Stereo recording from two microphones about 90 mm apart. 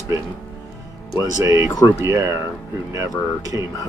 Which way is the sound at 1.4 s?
30° right (ahead or behind).